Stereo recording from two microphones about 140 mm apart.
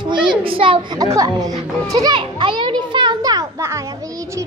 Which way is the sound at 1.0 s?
25° right (ahead or behind).